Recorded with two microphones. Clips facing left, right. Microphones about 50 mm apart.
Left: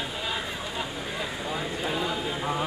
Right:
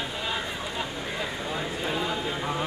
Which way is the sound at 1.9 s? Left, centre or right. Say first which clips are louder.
Even; centre.